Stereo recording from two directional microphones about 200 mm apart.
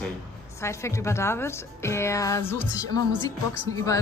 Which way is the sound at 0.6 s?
15° left (ahead or behind).